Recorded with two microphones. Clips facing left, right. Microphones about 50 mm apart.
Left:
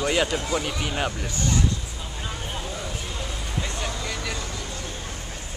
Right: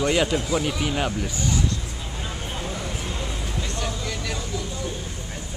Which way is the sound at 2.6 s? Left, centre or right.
Centre.